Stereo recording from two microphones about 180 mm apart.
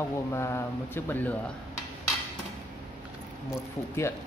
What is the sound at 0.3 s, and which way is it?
Mantra, 15° left (ahead or behind).